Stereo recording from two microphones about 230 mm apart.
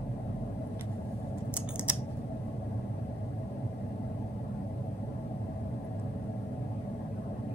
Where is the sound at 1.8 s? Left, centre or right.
Centre.